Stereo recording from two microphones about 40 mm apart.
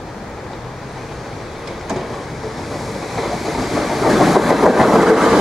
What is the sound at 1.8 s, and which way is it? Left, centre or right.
Waves, centre.